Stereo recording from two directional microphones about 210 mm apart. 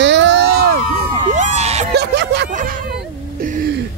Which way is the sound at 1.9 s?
55° right (ahead or behind).